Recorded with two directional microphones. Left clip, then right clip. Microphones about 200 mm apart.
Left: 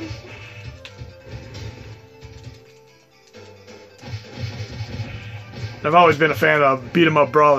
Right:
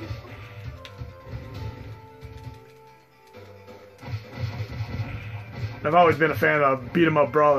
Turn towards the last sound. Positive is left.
turn(degrees=30)  # may be behind; listen again after turning